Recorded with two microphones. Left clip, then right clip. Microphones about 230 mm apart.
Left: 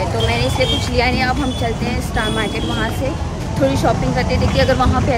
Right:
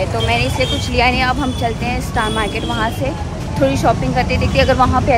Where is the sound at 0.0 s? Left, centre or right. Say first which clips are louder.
Right 1 dB; centre.